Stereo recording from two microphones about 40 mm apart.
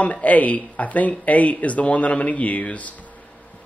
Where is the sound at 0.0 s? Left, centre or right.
Left.